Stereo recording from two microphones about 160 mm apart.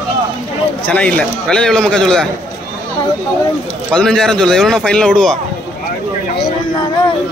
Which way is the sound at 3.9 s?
5° left (ahead or behind).